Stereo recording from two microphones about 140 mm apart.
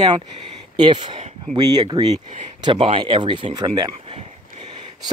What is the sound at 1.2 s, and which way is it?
Speech, 55° right (ahead or behind).